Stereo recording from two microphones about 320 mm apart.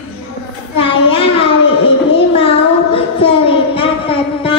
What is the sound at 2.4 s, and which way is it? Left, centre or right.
Child singing, centre.